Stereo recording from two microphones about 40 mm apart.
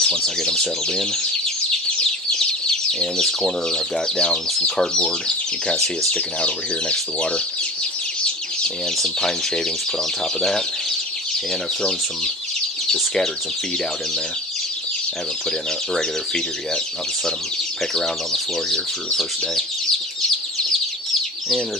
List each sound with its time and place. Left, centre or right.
0.0 s speech: centre
8.9 s speech: centre
12.8 s bird: centre
15.9 s speech: centre
17.9 s speech: centre